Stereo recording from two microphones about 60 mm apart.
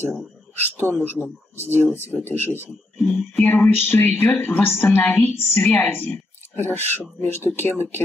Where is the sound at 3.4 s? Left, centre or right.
Left.